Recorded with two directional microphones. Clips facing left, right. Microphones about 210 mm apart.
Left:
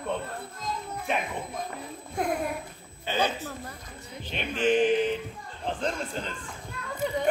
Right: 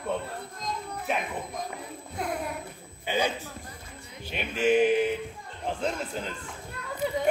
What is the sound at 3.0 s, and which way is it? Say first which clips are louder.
A woman's voice: even; 15° right (ahead or behind).